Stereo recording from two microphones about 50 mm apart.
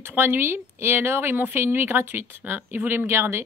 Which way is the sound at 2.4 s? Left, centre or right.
Right.